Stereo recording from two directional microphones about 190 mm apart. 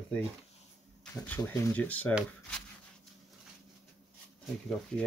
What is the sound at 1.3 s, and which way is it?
Speech, 10° left (ahead or behind).